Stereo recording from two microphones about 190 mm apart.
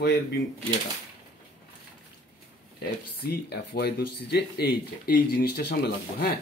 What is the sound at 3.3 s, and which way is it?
Speech, 60° left (ahead or behind).